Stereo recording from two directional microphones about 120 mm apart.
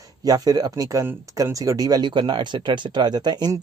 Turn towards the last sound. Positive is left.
turn(degrees=-35)  # may be behind; listen again after turning